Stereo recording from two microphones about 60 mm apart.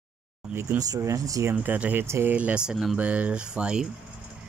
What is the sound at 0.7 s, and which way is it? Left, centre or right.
Speech, right.